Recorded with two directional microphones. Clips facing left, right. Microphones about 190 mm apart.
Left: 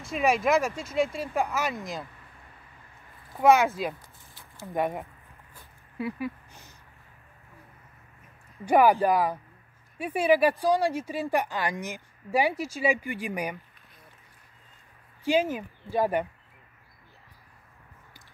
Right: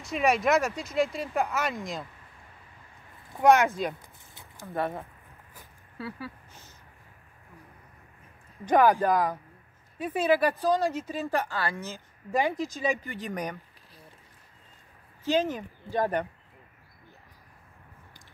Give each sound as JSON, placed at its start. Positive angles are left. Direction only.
{"t": 0.0, "sound": "speech", "side_deg": 0}
{"t": 3.3, "sound": "speech", "side_deg": 0}
{"t": 4.3, "sound": "a sound", "side_deg": -20}
{"t": 4.6, "sound": "speech", "side_deg": 15}
{"t": 5.9, "sound": "a sound", "side_deg": 15}
{"t": 8.6, "sound": "speech", "side_deg": 10}
{"t": 15.2, "sound": "speech", "side_deg": 10}